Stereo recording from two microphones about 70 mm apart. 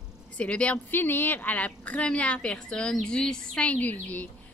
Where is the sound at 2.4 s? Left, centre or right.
Centre.